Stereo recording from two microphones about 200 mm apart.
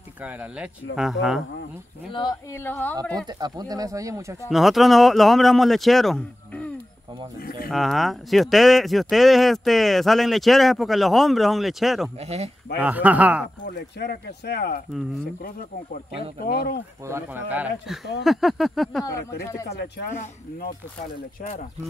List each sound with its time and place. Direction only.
0.2 s speech: 10° right (ahead or behind)
2.1 s speech: 15° left (ahead or behind)
3.3 s speech: 20° right (ahead or behind)
4.5 s speech: centre (ahead or behind)
7.3 s speech: 45° left (ahead or behind)
7.7 s speech: centre (ahead or behind)
12.2 s speech: 30° right (ahead or behind)
12.8 s speech: 5° right (ahead or behind)
13.7 s speech: 55° left (ahead or behind)
14.9 s speech: centre (ahead or behind)
16.4 s speech: 50° left (ahead or behind)
17.0 s speech: 10° right (ahead or behind)
20.1 s speech: 40° left (ahead or behind)